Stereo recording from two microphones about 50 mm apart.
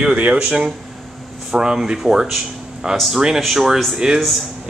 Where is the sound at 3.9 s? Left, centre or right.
Centre.